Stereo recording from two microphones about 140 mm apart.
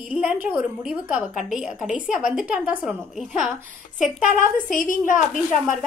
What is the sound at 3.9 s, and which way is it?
A woman's voice, 65° left (ahead or behind).